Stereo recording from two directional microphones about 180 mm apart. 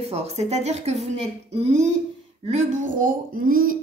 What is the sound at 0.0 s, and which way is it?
A woman's voice, 35° right (ahead or behind).